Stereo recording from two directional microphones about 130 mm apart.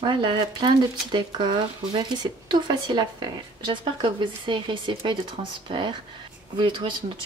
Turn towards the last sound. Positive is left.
turn(degrees=-40)  # may be behind; listen again after turning